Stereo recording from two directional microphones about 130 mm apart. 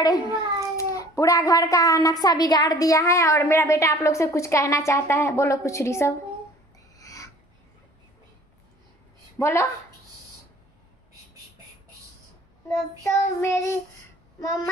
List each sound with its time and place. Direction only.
0.0 s a child's voice: 30° left (ahead or behind)
7.0 s a sound: 25° left (ahead or behind)
9.4 s a child's voice: 20° left (ahead or behind)
13.0 s a child's voice: 20° left (ahead or behind)